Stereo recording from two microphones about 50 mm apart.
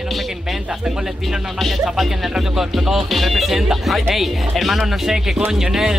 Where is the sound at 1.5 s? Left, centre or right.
Centre.